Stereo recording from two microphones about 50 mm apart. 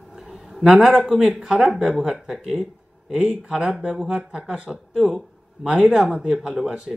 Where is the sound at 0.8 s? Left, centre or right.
Centre.